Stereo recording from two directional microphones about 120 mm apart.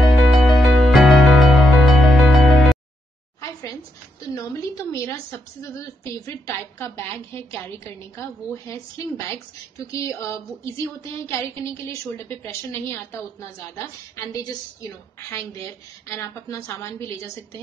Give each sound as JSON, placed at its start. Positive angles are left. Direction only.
{"t": 0.0, "sound": "music", "side_deg": 0}
{"t": 3.3, "sound": "a sound", "side_deg": 30}
{"t": 5.6, "sound": "a woman's voice", "side_deg": 25}